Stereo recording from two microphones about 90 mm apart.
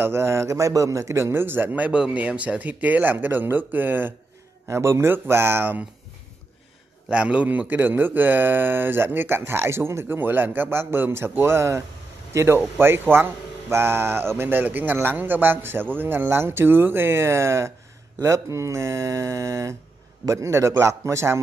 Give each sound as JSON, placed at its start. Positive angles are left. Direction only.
{"t": 0.0, "sound": "speech", "side_deg": -30}
{"t": 7.1, "sound": "speech", "side_deg": -15}